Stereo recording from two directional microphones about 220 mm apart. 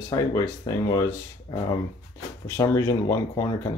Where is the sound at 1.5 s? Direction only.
20° left (ahead or behind).